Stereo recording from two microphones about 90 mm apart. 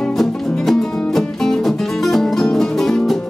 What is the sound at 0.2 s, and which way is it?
Music, 5° left (ahead or behind).